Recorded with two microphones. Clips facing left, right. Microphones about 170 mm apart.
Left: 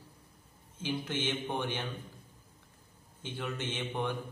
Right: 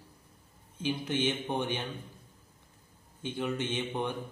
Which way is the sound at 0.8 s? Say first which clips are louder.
Right 4 dB; 15° right (ahead or behind).